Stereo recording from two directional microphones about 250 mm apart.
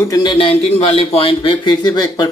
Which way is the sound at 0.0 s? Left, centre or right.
Centre.